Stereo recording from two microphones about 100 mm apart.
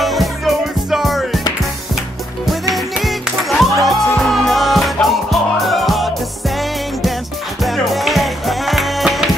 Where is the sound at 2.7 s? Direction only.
Centre (ahead or behind).